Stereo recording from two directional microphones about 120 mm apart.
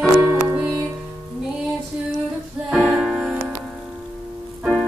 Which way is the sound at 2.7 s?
5° right (ahead or behind).